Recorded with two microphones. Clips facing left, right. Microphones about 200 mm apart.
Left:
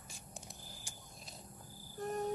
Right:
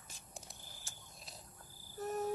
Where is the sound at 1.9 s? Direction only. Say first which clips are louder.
Even; 5° right (ahead or behind).